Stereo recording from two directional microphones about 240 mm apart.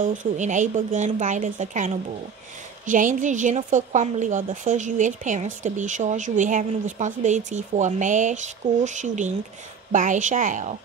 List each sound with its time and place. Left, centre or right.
0.0 s a woman's voice: right